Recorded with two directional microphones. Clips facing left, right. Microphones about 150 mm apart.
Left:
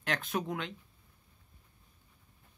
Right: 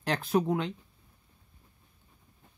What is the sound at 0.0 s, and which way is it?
Speech, 35° right (ahead or behind).